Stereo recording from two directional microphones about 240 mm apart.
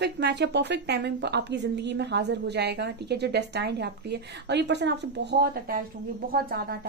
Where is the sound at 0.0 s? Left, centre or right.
Right.